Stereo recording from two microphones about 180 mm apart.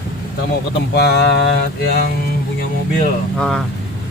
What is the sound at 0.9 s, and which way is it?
Speech, 65° left (ahead or behind).